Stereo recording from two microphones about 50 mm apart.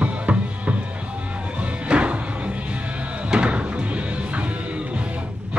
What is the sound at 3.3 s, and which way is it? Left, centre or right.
Music, right.